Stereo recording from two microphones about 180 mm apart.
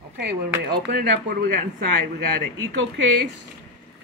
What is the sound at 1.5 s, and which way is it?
Speech, 50° right (ahead or behind).